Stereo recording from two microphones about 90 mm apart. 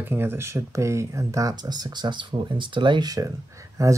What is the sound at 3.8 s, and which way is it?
Speech, 40° right (ahead or behind).